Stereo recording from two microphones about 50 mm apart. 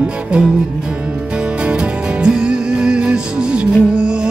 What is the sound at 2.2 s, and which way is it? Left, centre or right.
Music, centre.